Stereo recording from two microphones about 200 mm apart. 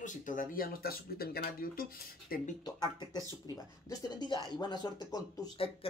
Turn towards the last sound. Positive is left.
turn(degrees=25)  # may be behind; listen again after turning